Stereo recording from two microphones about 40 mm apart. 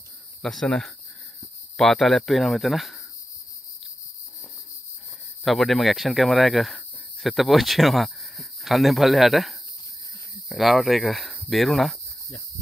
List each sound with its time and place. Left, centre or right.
0.4 s speech: centre
1.8 s speech: centre
5.4 s speech: centre